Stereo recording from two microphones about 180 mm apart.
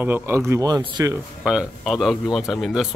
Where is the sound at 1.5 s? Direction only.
5° right (ahead or behind).